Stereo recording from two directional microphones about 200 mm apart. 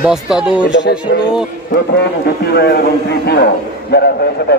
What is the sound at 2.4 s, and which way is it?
A man's voice, 55° left (ahead or behind).